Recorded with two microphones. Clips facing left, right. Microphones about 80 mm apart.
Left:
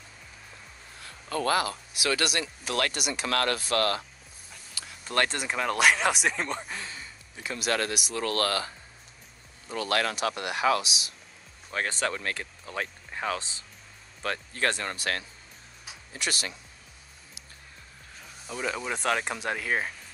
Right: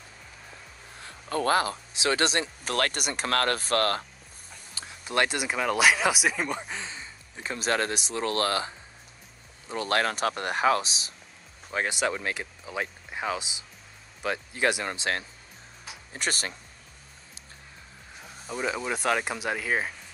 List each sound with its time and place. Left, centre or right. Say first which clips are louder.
1.0 s speech: right 2 dB; right
2.6 s speech: left 1 dB; right
5.0 s speech: right 1 dB; centre
6.7 s speech: right 1 dB; right
9.8 s speech: right 1 dB; right
11.7 s speech: right 2 dB; centre
15.0 s speech: right 2 dB; right
16.1 s speech: right 2 dB; right
18.5 s speech: right 2 dB; centre